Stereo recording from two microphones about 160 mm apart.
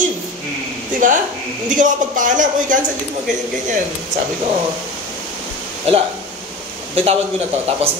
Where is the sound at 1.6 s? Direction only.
55° right (ahead or behind).